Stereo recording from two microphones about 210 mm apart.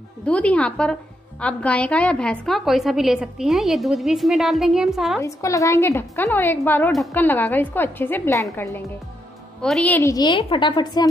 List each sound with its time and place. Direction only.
0.2 s a woman's voice: 5° left (ahead or behind)
5.2 s a woman's voice: 15° left (ahead or behind)
9.6 s a woman's voice: 5° left (ahead or behind)
9.9 s a woman's voice: 15° left (ahead or behind)